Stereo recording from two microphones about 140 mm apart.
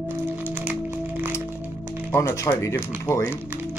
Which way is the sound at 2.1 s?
20° left (ahead or behind).